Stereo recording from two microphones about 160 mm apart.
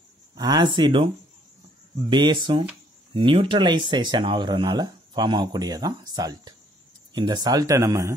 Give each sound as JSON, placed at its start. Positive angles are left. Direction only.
{"t": 0.4, "sound": "speech", "side_deg": -25}